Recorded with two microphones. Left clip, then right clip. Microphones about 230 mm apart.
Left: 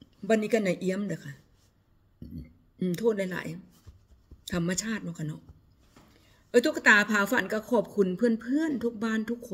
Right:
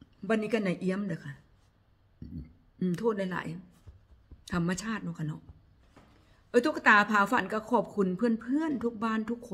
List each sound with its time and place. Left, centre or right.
0.3 s speech: centre
2.8 s speech: centre
6.5 s speech: centre